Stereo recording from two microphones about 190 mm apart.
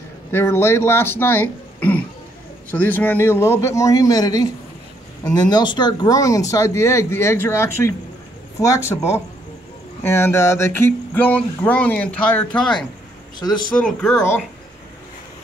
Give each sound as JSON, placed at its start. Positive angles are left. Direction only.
{"t": 0.3, "sound": "speech", "side_deg": 10}
{"t": 13.8, "sound": "speech", "side_deg": 5}